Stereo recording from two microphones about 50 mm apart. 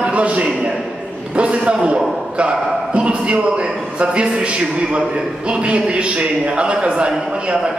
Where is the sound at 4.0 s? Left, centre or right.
Right.